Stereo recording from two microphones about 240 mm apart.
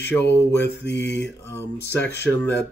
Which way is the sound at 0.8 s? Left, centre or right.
Left.